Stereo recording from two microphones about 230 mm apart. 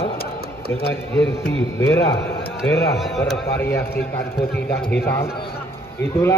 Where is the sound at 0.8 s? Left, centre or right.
Left.